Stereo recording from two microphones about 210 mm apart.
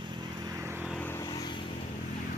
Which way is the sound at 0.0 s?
20° right (ahead or behind).